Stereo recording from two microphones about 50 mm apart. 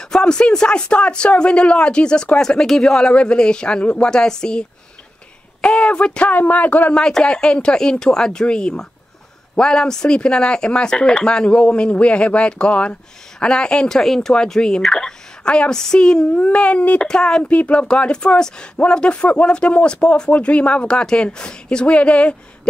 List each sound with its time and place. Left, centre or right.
0.0 s a man's voice: centre; by 6.9 s left
6.9 s speech: centre
16.3 s speech: left
17.0 s speech: centre
17.5 s speech: left